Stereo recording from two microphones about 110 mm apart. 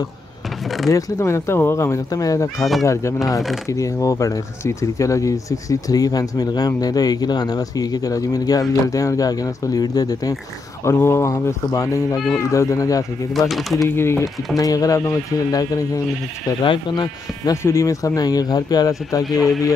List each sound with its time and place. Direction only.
0.8 s fowl: 30° left (ahead or behind)
3.6 s speech: 30° left (ahead or behind)
10.8 s fowl: 25° left (ahead or behind)
13.3 s speech: centre (ahead or behind)
13.8 s fowl: 20° left (ahead or behind)
14.6 s speech: 35° left (ahead or behind)
16.6 s speech: 45° left (ahead or behind)
17.6 s speech: 30° left (ahead or behind)